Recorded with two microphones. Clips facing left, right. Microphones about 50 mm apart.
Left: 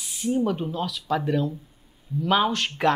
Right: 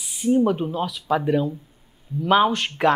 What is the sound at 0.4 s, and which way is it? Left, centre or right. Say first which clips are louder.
Speech: right 4 dB; centre.